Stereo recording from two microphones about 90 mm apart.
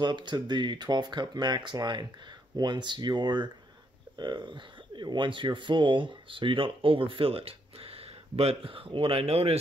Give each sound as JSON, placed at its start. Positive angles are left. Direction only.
{"t": 0.0, "sound": "speech", "side_deg": -55}